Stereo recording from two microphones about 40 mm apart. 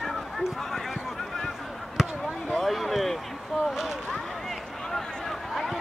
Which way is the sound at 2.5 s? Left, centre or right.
Centre.